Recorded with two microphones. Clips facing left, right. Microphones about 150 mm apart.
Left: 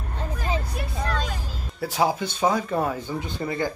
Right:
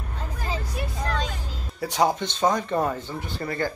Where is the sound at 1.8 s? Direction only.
Centre (ahead or behind).